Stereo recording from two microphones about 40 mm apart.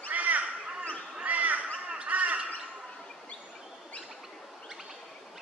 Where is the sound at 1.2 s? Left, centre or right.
Right.